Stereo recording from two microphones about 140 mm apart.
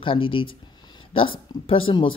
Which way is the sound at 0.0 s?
40° left (ahead or behind).